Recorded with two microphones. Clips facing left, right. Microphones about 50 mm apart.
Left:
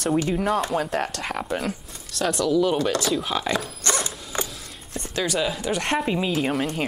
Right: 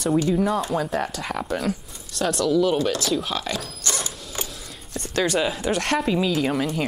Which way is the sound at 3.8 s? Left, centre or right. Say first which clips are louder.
Left 2 dB; left.